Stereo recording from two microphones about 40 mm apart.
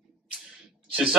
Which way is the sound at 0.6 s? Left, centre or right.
Right.